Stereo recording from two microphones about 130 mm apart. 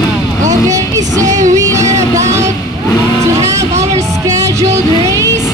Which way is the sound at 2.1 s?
25° right (ahead or behind).